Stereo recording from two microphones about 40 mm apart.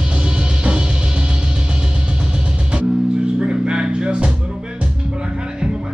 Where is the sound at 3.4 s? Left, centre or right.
Right.